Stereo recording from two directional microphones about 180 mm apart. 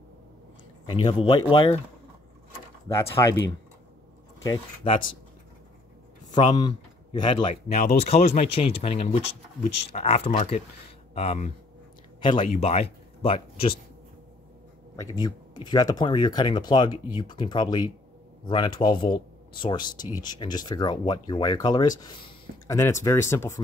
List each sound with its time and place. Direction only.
1.0 s speech: 30° left (ahead or behind)
2.9 s speech: 20° left (ahead or behind)
4.4 s speech: 20° left (ahead or behind)
6.5 s speech: 25° left (ahead or behind)
7.4 s speech: 45° left (ahead or behind)
15.0 s speech: 20° left (ahead or behind)